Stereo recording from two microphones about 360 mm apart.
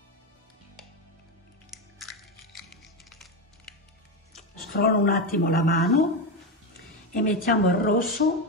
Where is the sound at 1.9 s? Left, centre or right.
Centre.